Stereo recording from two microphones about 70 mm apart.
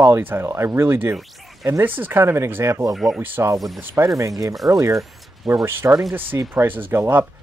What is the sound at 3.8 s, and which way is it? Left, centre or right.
Speech, right.